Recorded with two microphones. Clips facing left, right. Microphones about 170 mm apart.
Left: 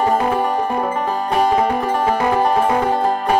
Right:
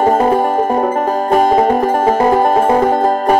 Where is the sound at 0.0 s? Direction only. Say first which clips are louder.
Right 5 dB; 45° right (ahead or behind).